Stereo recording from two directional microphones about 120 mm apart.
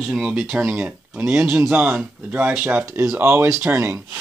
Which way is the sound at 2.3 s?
15° right (ahead or behind).